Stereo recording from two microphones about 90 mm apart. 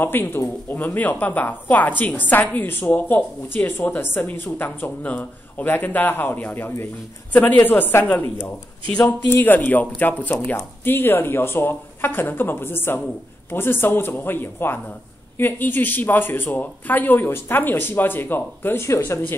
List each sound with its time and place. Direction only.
0.0 s speech: 25° left (ahead or behind)